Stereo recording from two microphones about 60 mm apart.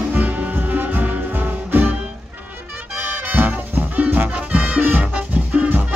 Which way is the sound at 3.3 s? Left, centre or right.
Right.